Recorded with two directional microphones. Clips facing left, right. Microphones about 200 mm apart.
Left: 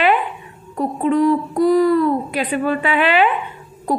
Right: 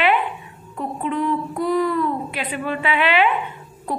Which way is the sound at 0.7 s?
40° left (ahead or behind).